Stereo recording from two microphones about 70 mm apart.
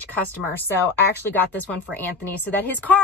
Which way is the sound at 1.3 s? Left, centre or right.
Left.